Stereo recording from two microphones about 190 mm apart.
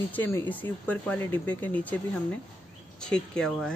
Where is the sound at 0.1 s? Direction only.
10° left (ahead or behind).